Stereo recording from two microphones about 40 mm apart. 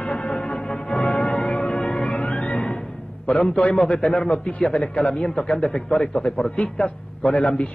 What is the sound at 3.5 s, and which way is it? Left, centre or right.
A man's voice, left.